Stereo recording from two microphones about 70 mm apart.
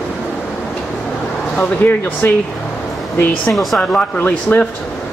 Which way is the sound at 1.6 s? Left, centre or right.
Left.